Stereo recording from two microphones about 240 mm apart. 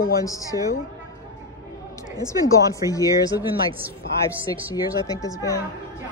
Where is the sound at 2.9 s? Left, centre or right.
Centre.